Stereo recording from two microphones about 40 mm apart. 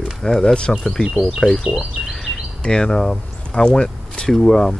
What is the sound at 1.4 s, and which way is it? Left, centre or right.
Speech, left.